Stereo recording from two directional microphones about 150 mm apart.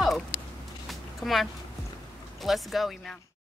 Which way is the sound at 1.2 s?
Centre (ahead or behind).